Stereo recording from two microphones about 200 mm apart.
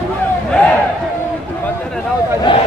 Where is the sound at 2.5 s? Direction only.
25° left (ahead or behind).